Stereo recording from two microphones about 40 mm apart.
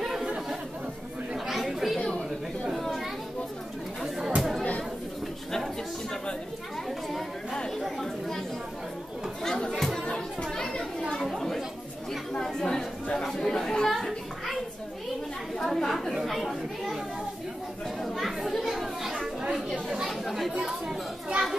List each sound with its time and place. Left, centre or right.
1.5 s chatter: centre
2.8 s children playing: centre
4.4 s chatter: centre
7.8 s chatter: centre
9.4 s chatter: centre
9.9 s chatter: centre
10.5 s children playing: centre
11.3 s chatter: centre
13.9 s children playing: centre
15.6 s chatter: centre
18.0 s chatter: centre
18.6 s children playing: centre
20.1 s chatter: centre